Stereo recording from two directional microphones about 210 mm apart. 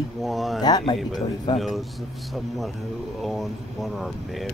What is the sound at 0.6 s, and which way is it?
Speech, 20° left (ahead or behind).